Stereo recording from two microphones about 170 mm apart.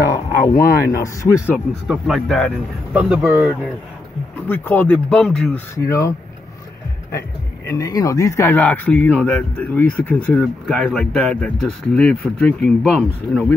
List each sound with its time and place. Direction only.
0.5 s speech: 15° left (ahead or behind)
1.9 s speech: centre (ahead or behind)
4.5 s speech: 10° left (ahead or behind)
5.9 s speech: 20° left (ahead or behind)
7.6 s speech: 20° left (ahead or behind); by 13.5 s 5° left (ahead or behind)